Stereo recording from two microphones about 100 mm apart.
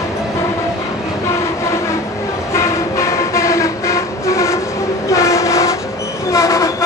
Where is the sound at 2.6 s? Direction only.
30° left (ahead or behind).